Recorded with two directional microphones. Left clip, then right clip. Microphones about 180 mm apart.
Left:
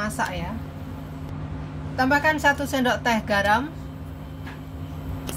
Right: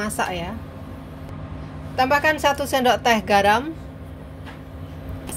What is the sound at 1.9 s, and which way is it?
A woman's voice, 40° right (ahead or behind).